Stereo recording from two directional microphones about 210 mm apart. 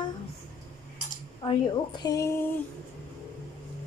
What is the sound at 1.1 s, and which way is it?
Cutlery, 20° left (ahead or behind).